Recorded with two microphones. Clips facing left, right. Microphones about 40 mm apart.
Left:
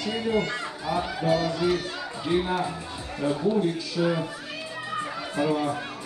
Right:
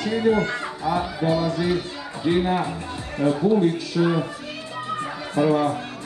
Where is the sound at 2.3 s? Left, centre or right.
Right.